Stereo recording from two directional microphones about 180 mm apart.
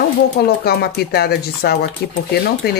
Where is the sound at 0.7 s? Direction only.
60° left (ahead or behind).